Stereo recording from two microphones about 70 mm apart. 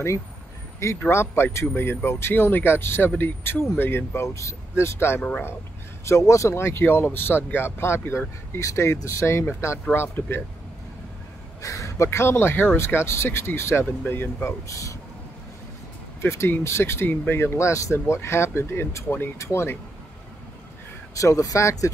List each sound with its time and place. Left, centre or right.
0.8 s speech: left
11.6 s speech: left
14.7 s speech: left
16.2 s speech: left
21.2 s speech: left